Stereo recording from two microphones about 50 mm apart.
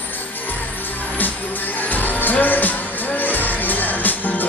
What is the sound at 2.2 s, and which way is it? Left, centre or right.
Music, left.